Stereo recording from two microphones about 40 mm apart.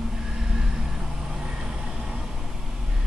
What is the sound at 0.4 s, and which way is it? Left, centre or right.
Vehicle, centre.